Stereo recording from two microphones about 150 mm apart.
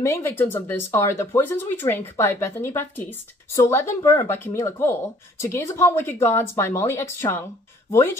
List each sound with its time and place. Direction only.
0.0 s speech: 15° left (ahead or behind)